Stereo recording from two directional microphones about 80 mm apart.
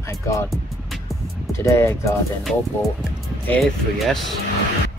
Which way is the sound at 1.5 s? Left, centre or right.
Left.